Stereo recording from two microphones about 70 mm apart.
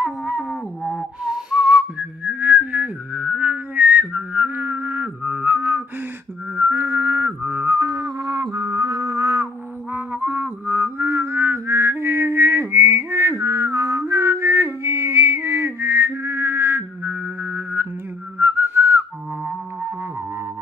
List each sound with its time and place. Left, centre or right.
0.0 s a sound: right
1.2 s whistling: centre; by 5.9 s right
6.5 s music: right
9.9 s music: right
18.4 s whistling: right